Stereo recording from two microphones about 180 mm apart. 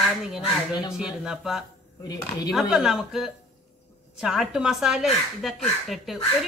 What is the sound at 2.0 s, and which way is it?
Speech, 20° left (ahead or behind).